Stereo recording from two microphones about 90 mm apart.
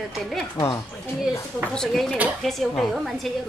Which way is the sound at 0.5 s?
45° left (ahead or behind).